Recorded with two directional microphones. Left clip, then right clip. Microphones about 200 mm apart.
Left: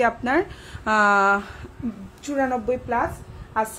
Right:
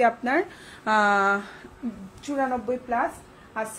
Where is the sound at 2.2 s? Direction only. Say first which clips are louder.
Left 3 dB; 35° left (ahead or behind).